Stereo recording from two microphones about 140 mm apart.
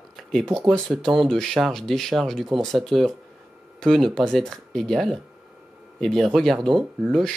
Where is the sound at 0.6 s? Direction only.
5° left (ahead or behind).